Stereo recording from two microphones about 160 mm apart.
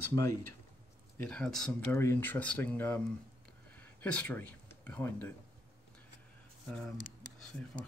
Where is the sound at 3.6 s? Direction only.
10° left (ahead or behind).